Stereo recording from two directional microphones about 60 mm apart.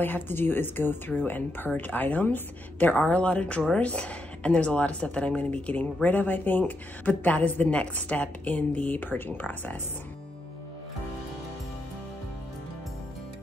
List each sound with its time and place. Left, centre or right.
0.0 s speech: left
3.1 s speech: left